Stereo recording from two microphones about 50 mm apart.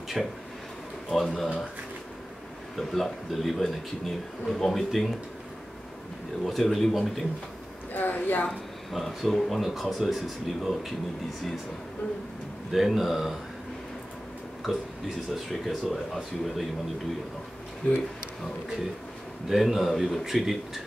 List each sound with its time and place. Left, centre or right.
0.2 s speech: centre
2.8 s speech: centre
6.4 s speech: centre
7.9 s speech: left
8.5 s speech: centre
12.7 s speech: centre
14.6 s speech: centre
19.5 s speech: centre